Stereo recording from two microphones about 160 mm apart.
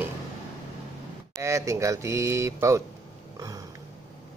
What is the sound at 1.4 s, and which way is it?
Speech, 20° right (ahead or behind).